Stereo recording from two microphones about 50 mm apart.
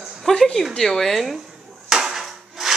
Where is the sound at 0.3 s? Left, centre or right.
Centre.